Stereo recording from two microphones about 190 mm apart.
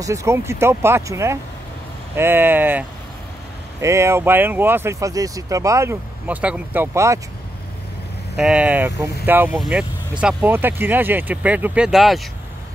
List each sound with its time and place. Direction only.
0.0 s speech: 15° right (ahead or behind)
3.8 s speech: 15° right (ahead or behind)
8.4 s speech: 5° right (ahead or behind)